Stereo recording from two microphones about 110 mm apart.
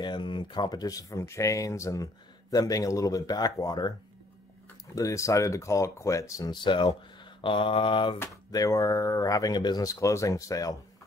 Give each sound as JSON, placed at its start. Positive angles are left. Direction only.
{"t": 0.0, "sound": "speech", "side_deg": 45}
{"t": 4.9, "sound": "speech", "side_deg": 30}
{"t": 6.5, "sound": "mantra", "side_deg": 45}
{"t": 8.5, "sound": "speech", "side_deg": 30}